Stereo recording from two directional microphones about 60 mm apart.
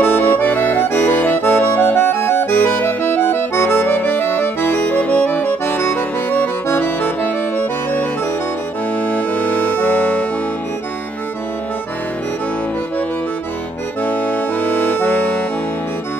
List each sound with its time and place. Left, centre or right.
0.0 s accordion: left
3.9 s accordion: left
5.9 s accordion: left
14.0 s accordion: left